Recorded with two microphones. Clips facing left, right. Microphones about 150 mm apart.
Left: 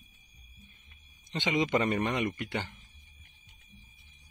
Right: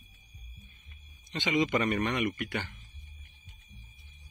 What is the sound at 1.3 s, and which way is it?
Speech, 20° left (ahead or behind).